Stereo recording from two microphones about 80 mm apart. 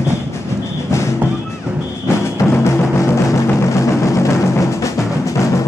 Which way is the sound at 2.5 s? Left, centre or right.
Left.